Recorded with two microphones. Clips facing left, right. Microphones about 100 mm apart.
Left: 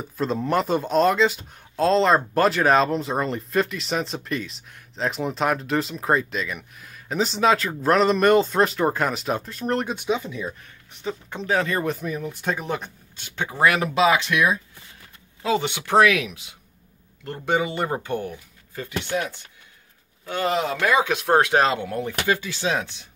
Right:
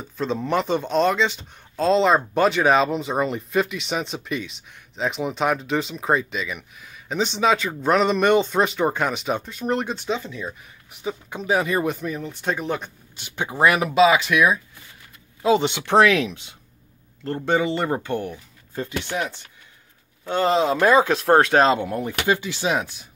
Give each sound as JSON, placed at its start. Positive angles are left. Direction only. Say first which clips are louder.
{"t": 0.2, "sound": "speech", "louder": "even", "side_deg": 0}
{"t": 10.9, "sound": "speech", "louder": "right 1 dB", "side_deg": -5}
{"t": 12.0, "sound": "speech", "louder": "even", "side_deg": 5}
{"t": 13.1, "sound": "speech", "louder": "right 1 dB", "side_deg": -20}
{"t": 13.8, "sound": "speech", "louder": "right 3 dB", "side_deg": -10}
{"t": 15.4, "sound": "speech", "louder": "right 4 dB", "side_deg": -20}
{"t": 17.5, "sound": "speech", "louder": "right 2 dB", "side_deg": 15}
{"t": 20.2, "sound": "speech", "louder": "right 4 dB", "side_deg": -25}
{"t": 21.6, "sound": "speech", "louder": "right 3 dB", "side_deg": -20}